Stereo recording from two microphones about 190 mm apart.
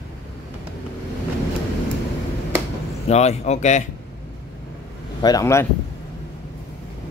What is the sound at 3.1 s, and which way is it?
Speech, 35° left (ahead or behind).